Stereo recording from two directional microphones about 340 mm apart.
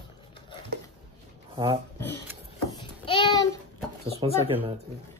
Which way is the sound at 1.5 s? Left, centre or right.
Centre.